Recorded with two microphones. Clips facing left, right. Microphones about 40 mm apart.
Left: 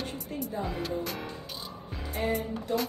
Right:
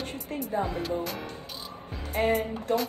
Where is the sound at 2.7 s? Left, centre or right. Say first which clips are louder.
Right 3 dB; right.